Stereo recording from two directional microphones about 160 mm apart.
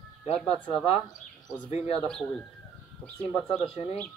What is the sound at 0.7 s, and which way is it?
Speech, 35° left (ahead or behind).